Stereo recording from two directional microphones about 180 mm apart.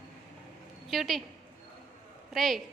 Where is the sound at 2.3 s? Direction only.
Centre (ahead or behind).